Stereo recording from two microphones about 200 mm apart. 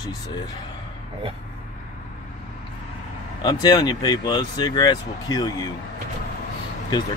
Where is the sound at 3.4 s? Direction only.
20° left (ahead or behind).